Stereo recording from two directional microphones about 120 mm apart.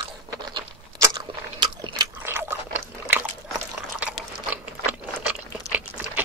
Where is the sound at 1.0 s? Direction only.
35° right (ahead or behind).